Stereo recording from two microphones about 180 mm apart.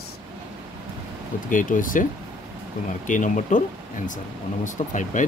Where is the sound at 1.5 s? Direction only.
50° left (ahead or behind).